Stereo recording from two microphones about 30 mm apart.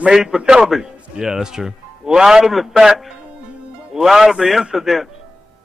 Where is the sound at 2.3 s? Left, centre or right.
Centre.